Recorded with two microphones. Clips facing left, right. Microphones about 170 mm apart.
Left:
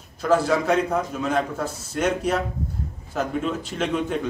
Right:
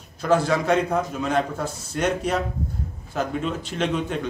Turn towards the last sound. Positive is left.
turn(degrees=0)  # may be behind; listen again after turning